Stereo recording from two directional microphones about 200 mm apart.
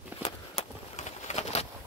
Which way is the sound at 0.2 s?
35° left (ahead or behind).